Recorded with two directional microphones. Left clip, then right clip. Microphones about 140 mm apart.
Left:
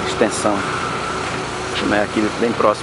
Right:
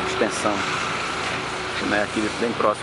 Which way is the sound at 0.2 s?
10° left (ahead or behind).